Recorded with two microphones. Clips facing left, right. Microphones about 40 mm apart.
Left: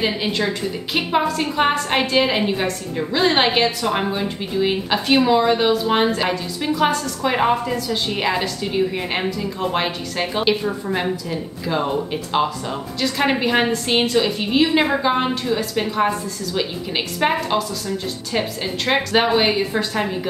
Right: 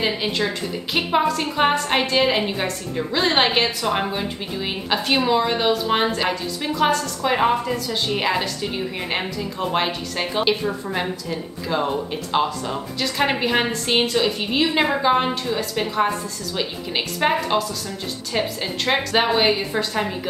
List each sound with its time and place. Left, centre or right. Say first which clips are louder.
0.0 s a woman's voice: left 1 dB; centre